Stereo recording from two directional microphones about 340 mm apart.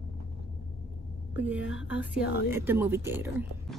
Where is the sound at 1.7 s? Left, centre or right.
Left.